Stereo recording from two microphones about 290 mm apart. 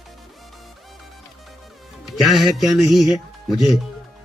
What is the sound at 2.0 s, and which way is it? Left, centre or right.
Speech, centre.